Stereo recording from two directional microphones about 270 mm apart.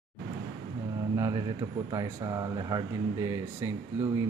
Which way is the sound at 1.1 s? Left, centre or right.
Centre.